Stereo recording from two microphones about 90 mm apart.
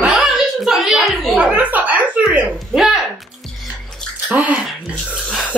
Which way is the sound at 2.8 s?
5° right (ahead or behind).